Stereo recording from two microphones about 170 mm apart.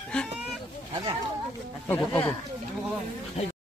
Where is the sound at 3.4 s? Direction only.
35° left (ahead or behind).